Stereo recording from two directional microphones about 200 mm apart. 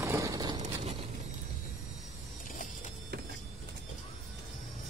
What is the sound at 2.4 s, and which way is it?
Vehicle, 40° left (ahead or behind).